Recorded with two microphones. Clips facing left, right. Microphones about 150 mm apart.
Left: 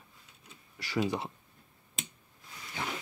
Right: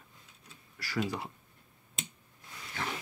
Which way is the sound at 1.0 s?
20° left (ahead or behind).